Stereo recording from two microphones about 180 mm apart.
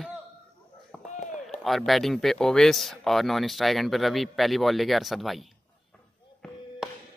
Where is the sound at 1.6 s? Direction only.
Centre (ahead or behind).